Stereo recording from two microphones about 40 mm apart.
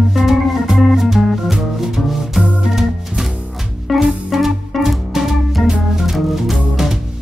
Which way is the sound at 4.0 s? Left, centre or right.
Centre.